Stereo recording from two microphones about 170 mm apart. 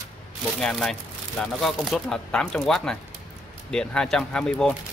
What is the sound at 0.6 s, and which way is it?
Speech, 5° left (ahead or behind).